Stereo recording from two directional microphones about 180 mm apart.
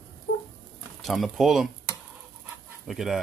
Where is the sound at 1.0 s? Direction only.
Centre (ahead or behind).